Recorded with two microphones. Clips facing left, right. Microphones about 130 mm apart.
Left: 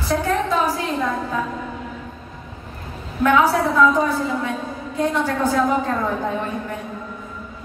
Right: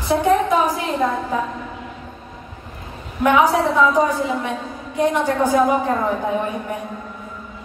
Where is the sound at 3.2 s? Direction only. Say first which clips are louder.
Right 1 dB; 15° right (ahead or behind).